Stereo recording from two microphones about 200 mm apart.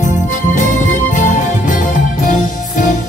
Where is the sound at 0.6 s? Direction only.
40° left (ahead or behind).